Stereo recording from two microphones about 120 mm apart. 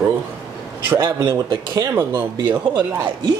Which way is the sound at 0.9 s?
30° right (ahead or behind).